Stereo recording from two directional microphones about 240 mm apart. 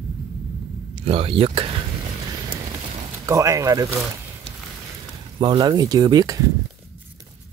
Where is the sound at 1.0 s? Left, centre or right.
Right.